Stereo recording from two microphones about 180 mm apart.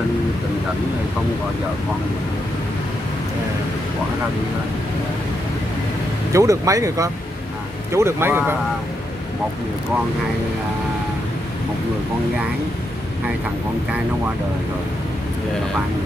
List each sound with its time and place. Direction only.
6.3 s speech: 20° right (ahead or behind)